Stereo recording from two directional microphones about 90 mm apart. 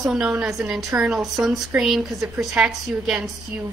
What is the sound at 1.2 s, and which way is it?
A woman's voice, centre (ahead or behind).